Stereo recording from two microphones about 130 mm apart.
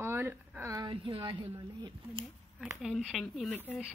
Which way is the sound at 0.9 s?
40° right (ahead or behind).